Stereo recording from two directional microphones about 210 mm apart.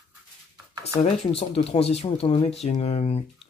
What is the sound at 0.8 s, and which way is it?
Speech, 30° left (ahead or behind).